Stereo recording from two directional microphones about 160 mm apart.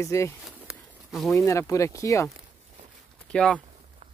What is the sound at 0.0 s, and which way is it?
Speech, 20° left (ahead or behind).